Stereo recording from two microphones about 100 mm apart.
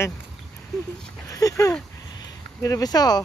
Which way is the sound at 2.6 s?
35° left (ahead or behind).